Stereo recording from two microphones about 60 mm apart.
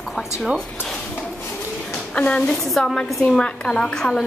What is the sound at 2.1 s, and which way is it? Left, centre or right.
Speech, centre.